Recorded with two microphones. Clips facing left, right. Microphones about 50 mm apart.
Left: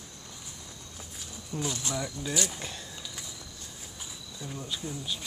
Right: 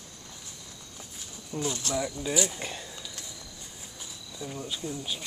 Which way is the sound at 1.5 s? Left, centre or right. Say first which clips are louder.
Right 3 dB; centre.